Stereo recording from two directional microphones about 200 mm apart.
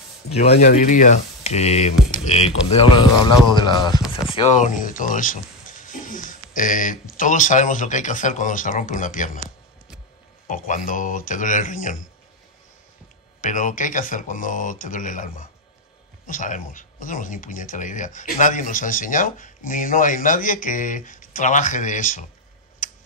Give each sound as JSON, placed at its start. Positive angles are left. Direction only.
{"t": 0.6, "sound": "speech", "side_deg": 40}
{"t": 10.5, "sound": "speech", "side_deg": 40}
{"t": 13.4, "sound": "speech", "side_deg": 40}
{"t": 22.8, "sound": "tick", "side_deg": 40}